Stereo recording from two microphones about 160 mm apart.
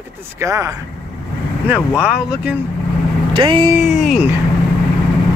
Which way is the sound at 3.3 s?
30° right (ahead or behind).